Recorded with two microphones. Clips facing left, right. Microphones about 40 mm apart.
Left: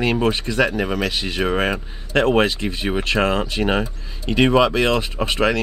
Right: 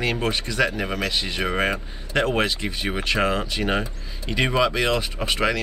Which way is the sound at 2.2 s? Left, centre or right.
Centre.